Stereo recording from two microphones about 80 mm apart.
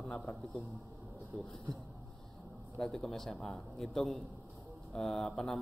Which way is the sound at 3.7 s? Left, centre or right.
Centre.